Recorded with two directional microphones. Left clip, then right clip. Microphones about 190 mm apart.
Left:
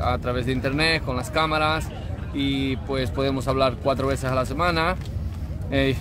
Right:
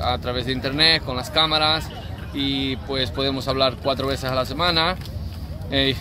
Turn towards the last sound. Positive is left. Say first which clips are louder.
# right 2 dB
turn(degrees=5)  # may be behind; listen again after turning